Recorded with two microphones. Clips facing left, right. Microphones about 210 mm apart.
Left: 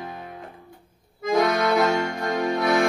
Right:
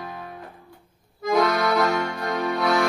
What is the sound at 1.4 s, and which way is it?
Accordion, 20° left (ahead or behind).